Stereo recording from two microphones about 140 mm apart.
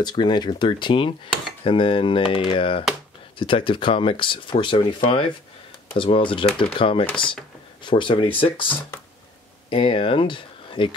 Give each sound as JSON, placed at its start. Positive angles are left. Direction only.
{"t": 0.0, "sound": "speech", "side_deg": 30}
{"t": 5.9, "sound": "speech", "side_deg": 40}
{"t": 8.5, "sound": "speech", "side_deg": 10}
{"t": 9.7, "sound": "speech", "side_deg": 40}